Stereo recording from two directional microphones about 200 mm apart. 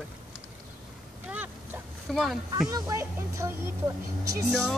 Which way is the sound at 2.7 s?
15° right (ahead or behind).